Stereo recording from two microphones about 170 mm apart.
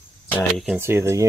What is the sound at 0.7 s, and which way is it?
Speech, 15° right (ahead or behind).